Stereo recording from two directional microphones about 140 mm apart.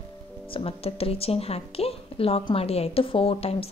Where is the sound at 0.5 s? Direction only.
40° left (ahead or behind).